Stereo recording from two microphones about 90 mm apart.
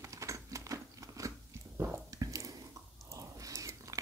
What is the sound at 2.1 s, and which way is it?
Squish, 40° right (ahead or behind).